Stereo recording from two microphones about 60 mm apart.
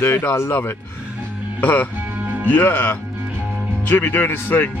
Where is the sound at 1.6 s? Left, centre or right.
Left.